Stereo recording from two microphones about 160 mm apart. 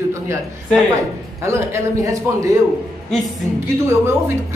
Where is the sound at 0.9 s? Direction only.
20° right (ahead or behind).